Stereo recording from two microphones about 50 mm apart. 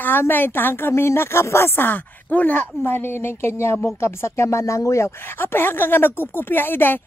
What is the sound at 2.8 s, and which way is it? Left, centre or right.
A woman's voice, left.